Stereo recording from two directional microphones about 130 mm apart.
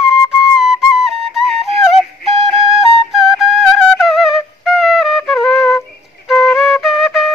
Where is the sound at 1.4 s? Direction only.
Centre (ahead or behind).